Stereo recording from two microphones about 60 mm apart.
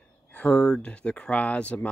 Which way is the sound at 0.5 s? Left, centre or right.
Centre.